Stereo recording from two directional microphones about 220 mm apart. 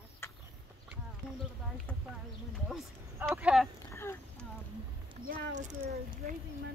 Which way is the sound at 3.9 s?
10° left (ahead or behind).